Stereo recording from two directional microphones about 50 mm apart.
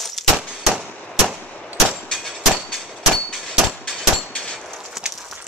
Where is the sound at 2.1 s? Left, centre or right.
Centre.